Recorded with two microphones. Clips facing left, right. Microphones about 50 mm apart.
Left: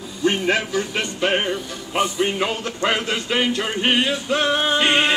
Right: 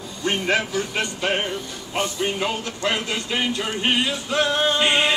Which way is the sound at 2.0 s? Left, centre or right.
Left.